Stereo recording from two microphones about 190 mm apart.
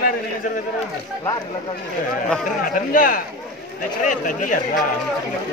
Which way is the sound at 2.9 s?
45° left (ahead or behind).